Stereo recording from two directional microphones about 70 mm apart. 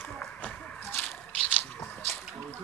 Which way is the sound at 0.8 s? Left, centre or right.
Left.